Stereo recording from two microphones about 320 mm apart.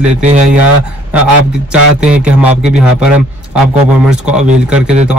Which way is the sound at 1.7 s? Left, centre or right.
Centre.